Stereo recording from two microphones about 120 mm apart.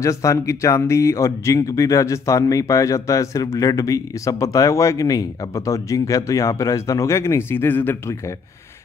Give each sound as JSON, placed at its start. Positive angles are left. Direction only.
{"t": 0.0, "sound": "speech", "side_deg": 25}